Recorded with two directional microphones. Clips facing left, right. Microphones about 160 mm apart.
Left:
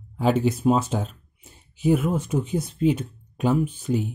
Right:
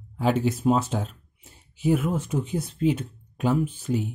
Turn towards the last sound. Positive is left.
turn(degrees=20)  # may be behind; listen again after turning